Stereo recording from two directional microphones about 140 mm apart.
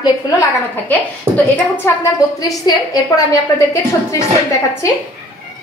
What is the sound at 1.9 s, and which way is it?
Speech, 20° left (ahead or behind).